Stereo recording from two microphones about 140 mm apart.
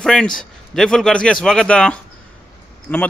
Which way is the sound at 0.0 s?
5° left (ahead or behind).